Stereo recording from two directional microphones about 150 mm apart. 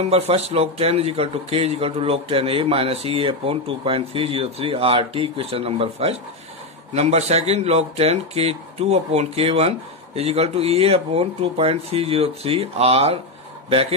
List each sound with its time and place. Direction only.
0.0 s a man's voice: 45° right (ahead or behind)